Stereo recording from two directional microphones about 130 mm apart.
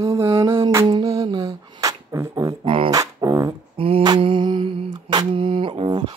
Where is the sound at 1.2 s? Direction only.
30° right (ahead or behind).